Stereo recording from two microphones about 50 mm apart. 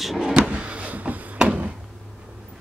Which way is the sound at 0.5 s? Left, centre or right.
Right.